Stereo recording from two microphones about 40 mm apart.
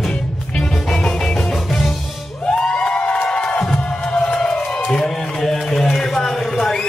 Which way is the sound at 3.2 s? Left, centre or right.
Left.